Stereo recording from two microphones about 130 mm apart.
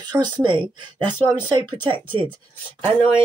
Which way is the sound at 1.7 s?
35° right (ahead or behind).